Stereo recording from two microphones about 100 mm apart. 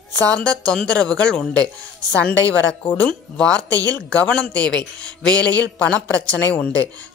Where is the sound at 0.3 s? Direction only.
15° left (ahead or behind).